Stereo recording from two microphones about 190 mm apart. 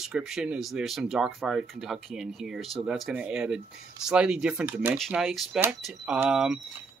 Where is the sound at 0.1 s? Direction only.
5° right (ahead or behind).